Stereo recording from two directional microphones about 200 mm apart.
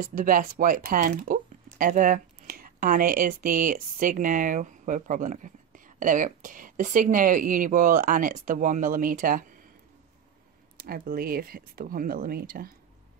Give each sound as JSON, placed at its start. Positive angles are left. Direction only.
{"t": 0.0, "sound": "speech", "side_deg": -45}
{"t": 10.8, "sound": "speech", "side_deg": -45}